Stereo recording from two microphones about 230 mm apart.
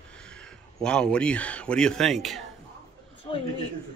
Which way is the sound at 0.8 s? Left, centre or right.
Centre.